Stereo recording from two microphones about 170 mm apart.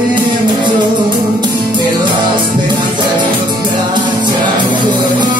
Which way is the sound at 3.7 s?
25° right (ahead or behind).